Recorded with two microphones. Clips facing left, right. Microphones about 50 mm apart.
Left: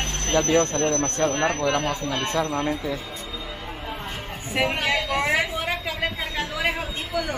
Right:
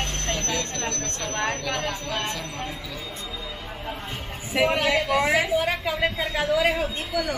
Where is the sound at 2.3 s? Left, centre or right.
Left.